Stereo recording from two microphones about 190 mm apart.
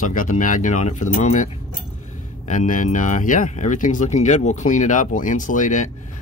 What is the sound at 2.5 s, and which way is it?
Speech, 45° left (ahead or behind).